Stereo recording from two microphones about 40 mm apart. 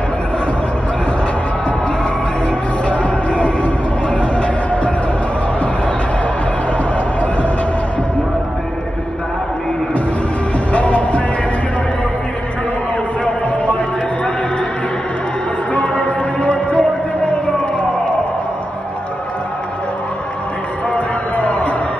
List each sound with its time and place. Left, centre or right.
2.9 s music: left
10.7 s music: left
15.7 s music: left
20.9 s music: left